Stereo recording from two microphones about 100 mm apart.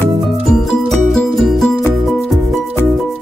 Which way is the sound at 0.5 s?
5° left (ahead or behind).